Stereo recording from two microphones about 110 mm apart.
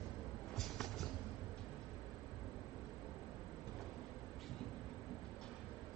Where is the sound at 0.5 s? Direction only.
5° left (ahead or behind).